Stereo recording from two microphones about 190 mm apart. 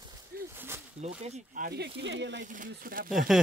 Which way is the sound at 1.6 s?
60° right (ahead or behind).